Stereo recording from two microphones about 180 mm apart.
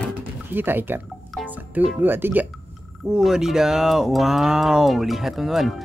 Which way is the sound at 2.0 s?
10° right (ahead or behind).